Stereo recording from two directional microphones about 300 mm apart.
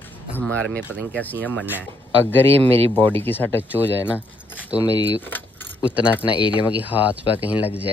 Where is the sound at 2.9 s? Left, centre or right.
Centre.